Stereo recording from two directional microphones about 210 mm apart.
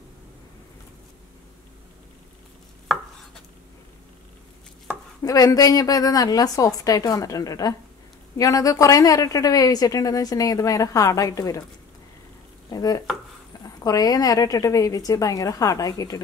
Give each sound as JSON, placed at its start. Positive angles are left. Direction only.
{"t": 5.2, "sound": "a woman's voice", "side_deg": 15}
{"t": 12.6, "sound": "a woman's voice", "side_deg": 15}